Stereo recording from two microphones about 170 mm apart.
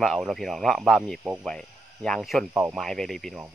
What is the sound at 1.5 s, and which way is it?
Speech, 5° left (ahead or behind).